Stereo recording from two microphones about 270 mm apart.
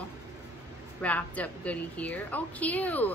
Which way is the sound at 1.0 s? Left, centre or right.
Centre.